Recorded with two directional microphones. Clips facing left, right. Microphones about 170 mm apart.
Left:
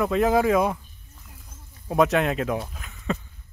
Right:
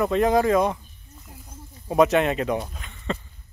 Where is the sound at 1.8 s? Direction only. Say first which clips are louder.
Right 2 dB; centre (ahead or behind).